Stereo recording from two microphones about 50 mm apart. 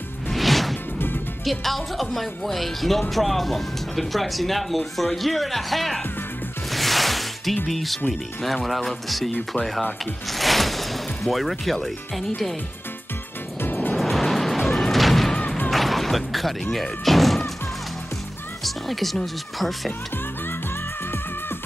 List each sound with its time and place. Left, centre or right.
0.3 s music: centre
0.9 s music: left
1.4 s speech: centre
6.7 s music: centre
7.6 s speech: centre
10.3 s speech: centre
13.6 s music: left
13.9 s music: centre
16.7 s speech: centre
18.6 s speech: centre